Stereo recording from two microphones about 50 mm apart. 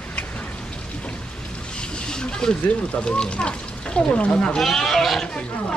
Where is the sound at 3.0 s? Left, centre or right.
Centre.